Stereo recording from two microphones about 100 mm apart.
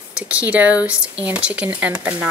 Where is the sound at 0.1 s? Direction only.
10° right (ahead or behind).